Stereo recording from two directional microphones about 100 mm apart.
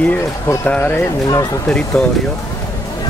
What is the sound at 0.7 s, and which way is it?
Speech, 20° left (ahead or behind).